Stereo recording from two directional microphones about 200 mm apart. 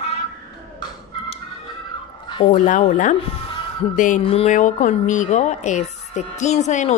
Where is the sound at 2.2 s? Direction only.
20° left (ahead or behind).